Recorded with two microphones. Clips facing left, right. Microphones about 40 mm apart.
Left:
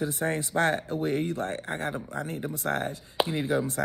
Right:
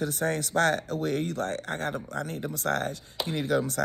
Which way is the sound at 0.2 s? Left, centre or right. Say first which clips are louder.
Right 1 dB; centre.